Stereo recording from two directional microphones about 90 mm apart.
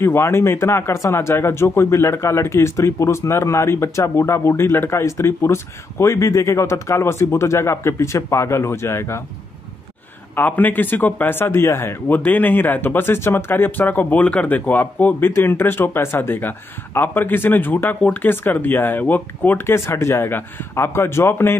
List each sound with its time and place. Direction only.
0.0 s speech: 30° left (ahead or behind)
10.3 s a man's voice: 20° left (ahead or behind)